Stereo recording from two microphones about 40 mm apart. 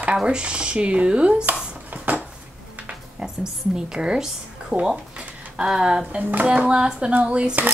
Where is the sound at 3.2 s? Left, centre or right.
Centre.